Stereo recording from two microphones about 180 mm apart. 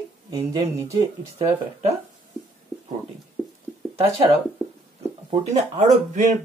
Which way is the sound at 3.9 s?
35° right (ahead or behind).